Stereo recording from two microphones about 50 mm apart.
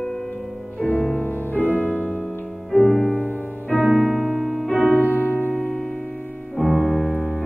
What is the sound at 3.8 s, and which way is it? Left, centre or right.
Music, right.